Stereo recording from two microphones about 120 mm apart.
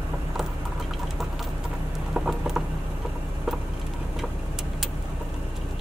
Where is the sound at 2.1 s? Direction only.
5° right (ahead or behind).